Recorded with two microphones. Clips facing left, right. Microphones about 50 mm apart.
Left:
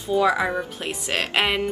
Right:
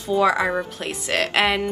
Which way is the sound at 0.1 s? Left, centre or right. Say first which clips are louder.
Right 1 dB; centre.